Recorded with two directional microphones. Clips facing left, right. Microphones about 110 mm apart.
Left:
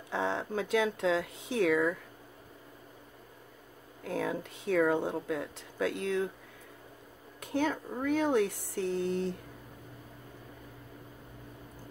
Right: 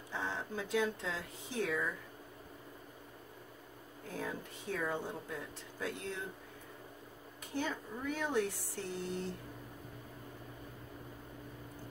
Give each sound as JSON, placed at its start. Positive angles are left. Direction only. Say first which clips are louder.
{"t": 0.1, "sound": "speech", "louder": "left 8 dB", "side_deg": 70}
{"t": 4.0, "sound": "speech", "louder": "left 8 dB", "side_deg": 70}
{"t": 7.5, "sound": "speech", "louder": "left 8 dB", "side_deg": 55}